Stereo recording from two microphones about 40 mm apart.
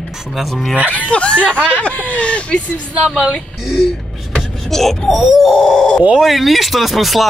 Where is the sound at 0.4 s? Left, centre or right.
Centre.